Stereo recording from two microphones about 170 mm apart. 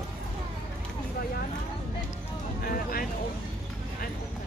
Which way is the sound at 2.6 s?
55° left (ahead or behind).